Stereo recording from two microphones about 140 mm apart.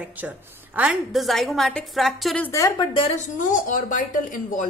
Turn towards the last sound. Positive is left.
turn(degrees=65)  # may be behind; listen again after turning